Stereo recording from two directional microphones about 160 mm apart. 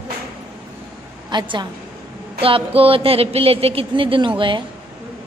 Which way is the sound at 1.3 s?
30° right (ahead or behind).